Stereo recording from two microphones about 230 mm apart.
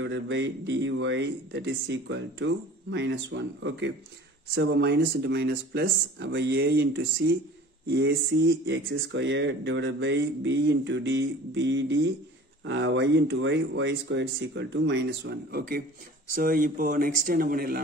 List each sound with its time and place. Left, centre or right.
0.0 s speech: right